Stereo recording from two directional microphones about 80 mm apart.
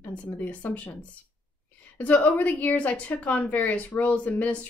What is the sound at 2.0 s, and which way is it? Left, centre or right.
Speech, centre.